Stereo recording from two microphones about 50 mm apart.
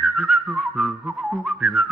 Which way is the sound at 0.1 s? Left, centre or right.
Centre.